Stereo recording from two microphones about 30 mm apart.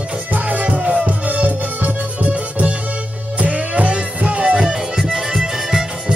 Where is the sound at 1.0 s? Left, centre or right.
Right.